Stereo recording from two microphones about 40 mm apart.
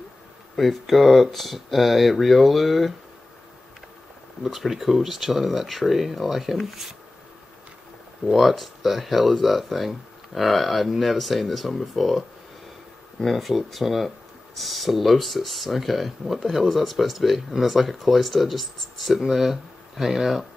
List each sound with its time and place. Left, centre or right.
0.6 s speech: centre
4.4 s speech: centre
8.3 s speech: centre